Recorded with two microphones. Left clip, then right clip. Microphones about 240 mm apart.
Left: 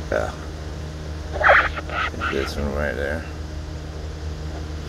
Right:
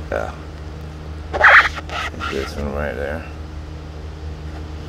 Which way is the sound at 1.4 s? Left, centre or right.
Right.